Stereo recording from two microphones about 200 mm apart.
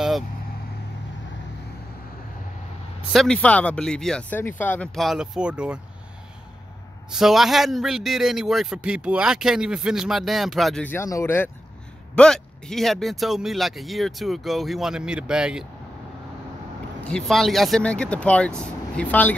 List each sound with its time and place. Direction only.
3.1 s a man's voice: centre (ahead or behind)
7.1 s a man's voice: centre (ahead or behind)
17.1 s a man's voice: centre (ahead or behind)